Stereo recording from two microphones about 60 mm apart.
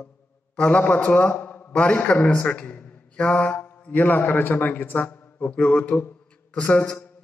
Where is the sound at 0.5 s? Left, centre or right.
Left.